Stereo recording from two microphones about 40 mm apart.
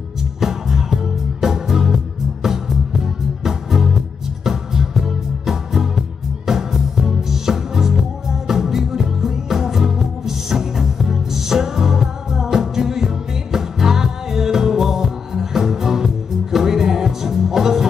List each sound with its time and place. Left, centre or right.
0.4 s music: centre